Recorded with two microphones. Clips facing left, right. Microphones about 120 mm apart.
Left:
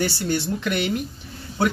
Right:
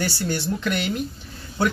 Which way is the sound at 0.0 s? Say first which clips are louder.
Left 2 dB; 20° left (ahead or behind).